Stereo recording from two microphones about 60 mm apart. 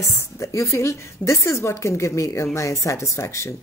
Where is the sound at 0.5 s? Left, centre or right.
Left.